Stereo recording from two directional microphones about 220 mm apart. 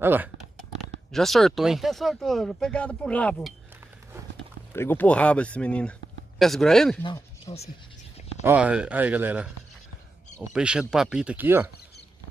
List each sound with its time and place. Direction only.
0.0 s speech: 10° right (ahead or behind)
1.1 s speech: centre (ahead or behind)
4.7 s speech: 10° left (ahead or behind)
7.0 s speech: 20° left (ahead or behind)
8.5 s speech: 5° right (ahead or behind)
10.5 s speech: 5° right (ahead or behind)